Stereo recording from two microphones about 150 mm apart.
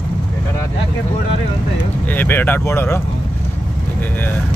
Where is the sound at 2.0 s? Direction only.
10° left (ahead or behind).